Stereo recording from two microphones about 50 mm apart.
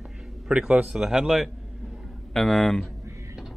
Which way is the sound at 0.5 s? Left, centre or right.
Centre.